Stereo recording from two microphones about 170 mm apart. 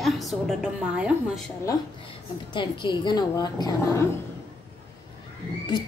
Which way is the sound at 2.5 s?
25° left (ahead or behind).